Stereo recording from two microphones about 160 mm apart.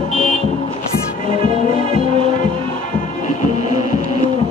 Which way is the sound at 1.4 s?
35° right (ahead or behind).